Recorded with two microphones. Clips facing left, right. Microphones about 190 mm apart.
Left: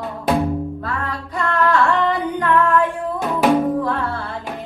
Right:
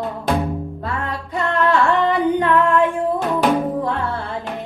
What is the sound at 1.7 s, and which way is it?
Singing, 25° right (ahead or behind).